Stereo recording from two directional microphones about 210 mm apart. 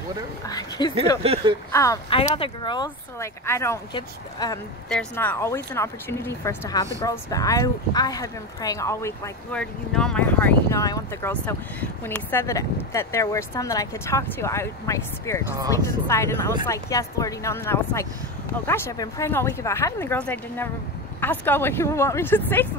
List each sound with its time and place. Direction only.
0.5 s speech: 20° left (ahead or behind)
1.2 s speech: 30° right (ahead or behind)
1.7 s speech: 15° left (ahead or behind)
2.0 s speech: 25° left (ahead or behind)
4.8 s speech: 5° left (ahead or behind)